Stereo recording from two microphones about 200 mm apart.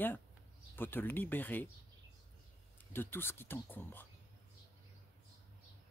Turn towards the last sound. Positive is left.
turn(degrees=10)  # may be behind; listen again after turning